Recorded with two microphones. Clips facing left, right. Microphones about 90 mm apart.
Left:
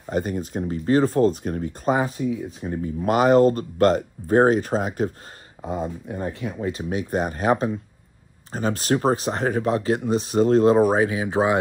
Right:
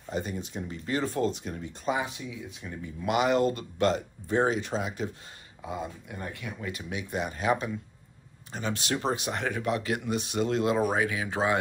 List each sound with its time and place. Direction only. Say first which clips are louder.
0.1 s speech: left 8 dB; 50° left (ahead or behind)
5.6 s speech: left 8 dB; 35° left (ahead or behind)
11.1 s speech: left 7 dB; 20° left (ahead or behind)